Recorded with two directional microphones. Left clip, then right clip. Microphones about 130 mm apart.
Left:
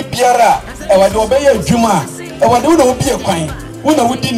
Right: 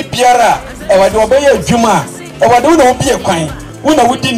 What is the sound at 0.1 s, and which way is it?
Speech, 30° left (ahead or behind).